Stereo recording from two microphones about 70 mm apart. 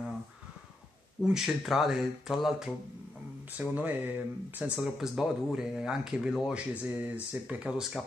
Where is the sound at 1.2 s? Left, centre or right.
Centre.